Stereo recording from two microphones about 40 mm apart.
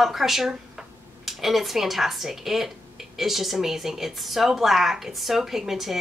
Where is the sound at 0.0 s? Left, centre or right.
Centre.